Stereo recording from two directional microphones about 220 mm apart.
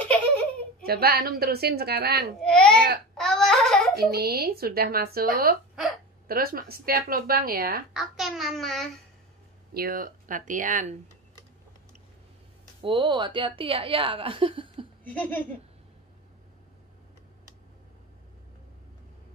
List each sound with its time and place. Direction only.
0.8 s speech: 45° right (ahead or behind)
2.4 s a child's voice: 5° left (ahead or behind)
2.7 s speech: 45° right (ahead or behind)
3.2 s a sound: centre (ahead or behind)
3.9 s speech: 45° right (ahead or behind)
7.9 s a child's voice: centre (ahead or behind)
9.8 s speech: 40° right (ahead or behind)
12.8 s a woman's voice: 20° right (ahead or behind)
15.0 s laughter: 5° left (ahead or behind)